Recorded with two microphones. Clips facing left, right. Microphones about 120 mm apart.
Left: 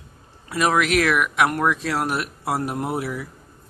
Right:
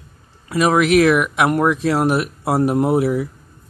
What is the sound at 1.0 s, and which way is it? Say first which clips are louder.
Speech: right 5 dB; 20° right (ahead or behind).